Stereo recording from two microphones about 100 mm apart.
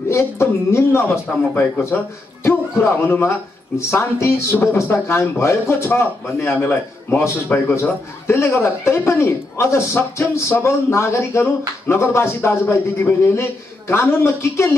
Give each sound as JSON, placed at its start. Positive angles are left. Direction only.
{"t": 0.1, "sound": "speech", "side_deg": 25}